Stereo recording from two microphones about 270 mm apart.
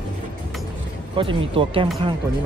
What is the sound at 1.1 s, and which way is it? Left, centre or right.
Speech, centre.